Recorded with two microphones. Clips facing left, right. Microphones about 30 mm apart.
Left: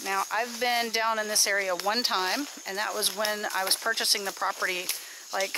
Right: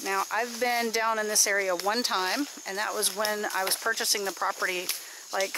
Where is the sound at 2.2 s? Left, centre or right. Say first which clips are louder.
Even; centre.